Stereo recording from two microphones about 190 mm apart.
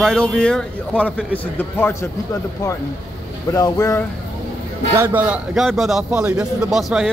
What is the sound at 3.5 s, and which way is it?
Speech, 20° left (ahead or behind).